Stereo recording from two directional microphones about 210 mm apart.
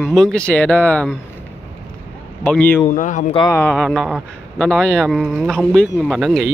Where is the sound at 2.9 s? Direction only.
35° left (ahead or behind).